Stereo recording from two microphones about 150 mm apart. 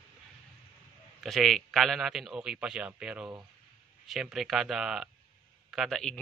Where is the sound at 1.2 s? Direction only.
Centre (ahead or behind).